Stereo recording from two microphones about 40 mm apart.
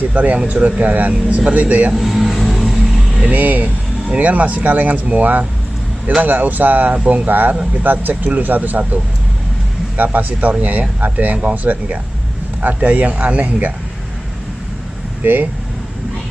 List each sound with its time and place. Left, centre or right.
0.1 s speech: right
2.0 s vehicle: centre
3.3 s speech: right
6.9 s speech: right
7.2 s speech: right
15.2 s speech: right